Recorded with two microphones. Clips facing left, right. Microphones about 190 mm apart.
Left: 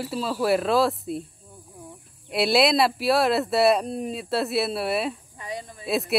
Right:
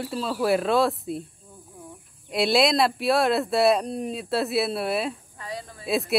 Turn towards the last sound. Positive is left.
turn(degrees=0)  # may be behind; listen again after turning